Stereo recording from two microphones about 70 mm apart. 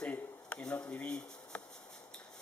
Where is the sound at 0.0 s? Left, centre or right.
Centre.